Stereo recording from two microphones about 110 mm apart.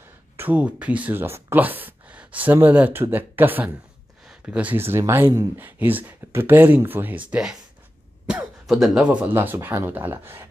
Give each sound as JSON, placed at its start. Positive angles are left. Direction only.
{"t": 0.4, "sound": "speech", "side_deg": -15}
{"t": 8.6, "sound": "speech", "side_deg": 0}